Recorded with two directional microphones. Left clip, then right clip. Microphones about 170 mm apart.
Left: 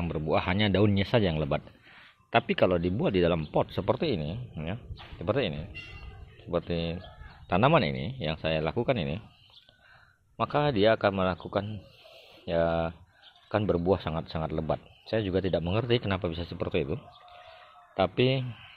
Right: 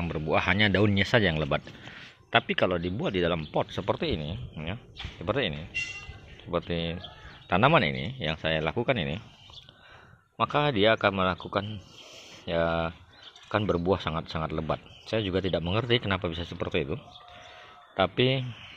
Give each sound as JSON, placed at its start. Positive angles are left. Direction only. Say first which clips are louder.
{"t": 0.0, "sound": "speech", "louder": "right 2 dB", "side_deg": 5}
{"t": 10.3, "sound": "speech", "louder": "right 1 dB", "side_deg": 0}
{"t": 12.4, "sound": "a man's voice", "louder": "even", "side_deg": 5}